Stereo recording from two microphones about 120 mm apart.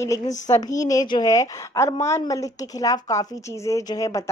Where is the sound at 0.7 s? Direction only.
30° left (ahead or behind).